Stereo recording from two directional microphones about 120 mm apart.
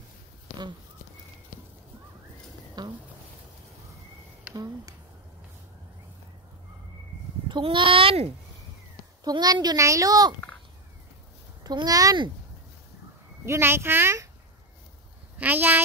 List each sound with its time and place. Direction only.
2.8 s a sound: 35° right (ahead or behind)
7.4 s a sound: 40° right (ahead or behind)
9.2 s speech: 35° right (ahead or behind)
11.6 s speech: 35° right (ahead or behind)
13.5 s speech: 20° right (ahead or behind)
15.3 s speech: 15° right (ahead or behind)